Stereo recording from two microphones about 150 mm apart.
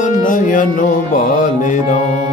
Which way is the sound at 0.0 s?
65° left (ahead or behind).